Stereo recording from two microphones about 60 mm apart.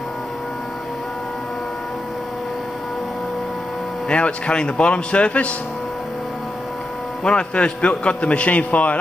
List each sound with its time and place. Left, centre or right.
4.1 s a man's voice: centre
7.2 s a man's voice: centre